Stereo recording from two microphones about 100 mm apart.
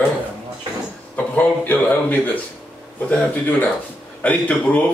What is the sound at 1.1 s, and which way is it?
Speech, 15° left (ahead or behind).